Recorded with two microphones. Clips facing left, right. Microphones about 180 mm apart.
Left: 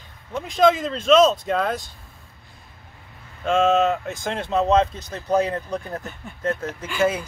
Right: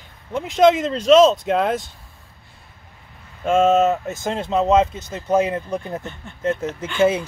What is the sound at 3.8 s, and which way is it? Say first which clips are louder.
Speech: right 3 dB; 20° right (ahead or behind).